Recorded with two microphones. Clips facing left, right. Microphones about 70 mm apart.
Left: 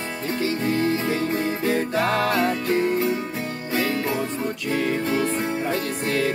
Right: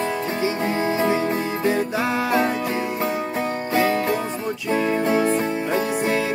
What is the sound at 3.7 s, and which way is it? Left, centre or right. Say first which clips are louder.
Music: right 4 dB; right.